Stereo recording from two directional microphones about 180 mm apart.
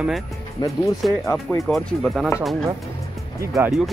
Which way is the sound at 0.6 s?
25° left (ahead or behind).